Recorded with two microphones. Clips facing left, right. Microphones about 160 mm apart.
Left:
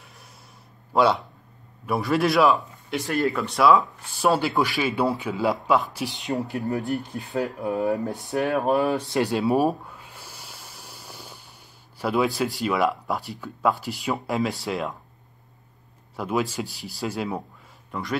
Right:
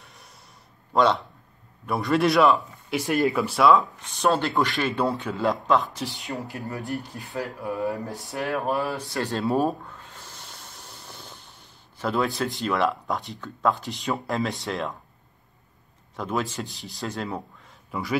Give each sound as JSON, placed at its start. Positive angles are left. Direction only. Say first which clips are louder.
{"t": 0.0, "sound": "a sound", "louder": "left 1 dB", "side_deg": 0}
{"t": 0.9, "sound": "speech", "louder": "left 1 dB", "side_deg": 5}
{"t": 3.1, "sound": "speech", "louder": "right 1 dB", "side_deg": -15}
{"t": 3.3, "sound": "speech", "louder": "left 1 dB", "side_deg": 0}
{"t": 6.0, "sound": "speech", "louder": "left 5 dB", "side_deg": 20}
{"t": 9.7, "sound": "a sound", "louder": "left 3 dB", "side_deg": 10}
{"t": 12.0, "sound": "speech", "louder": "left 2 dB", "side_deg": 5}
{"t": 16.2, "sound": "speech", "louder": "left 2 dB", "side_deg": 5}